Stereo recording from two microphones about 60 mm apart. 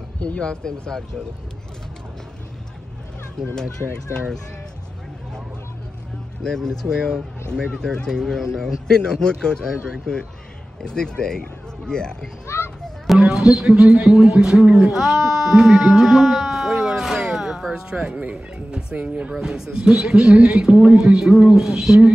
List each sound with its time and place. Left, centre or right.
0.2 s a man's voice: centre
6.4 s a man's voice: centre
12.5 s a sound: left
12.8 s speech: centre
17.7 s a man's voice: centre
19.3 s a man's voice: centre